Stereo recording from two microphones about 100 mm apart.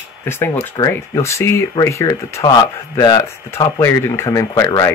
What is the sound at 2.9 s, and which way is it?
Speech, 40° left (ahead or behind).